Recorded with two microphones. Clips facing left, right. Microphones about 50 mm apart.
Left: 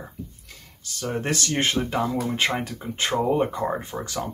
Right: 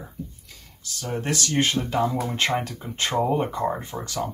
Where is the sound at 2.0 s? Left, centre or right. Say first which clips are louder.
Right 1 dB; centre.